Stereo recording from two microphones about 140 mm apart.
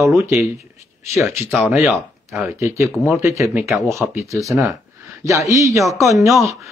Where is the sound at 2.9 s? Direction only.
Centre (ahead or behind).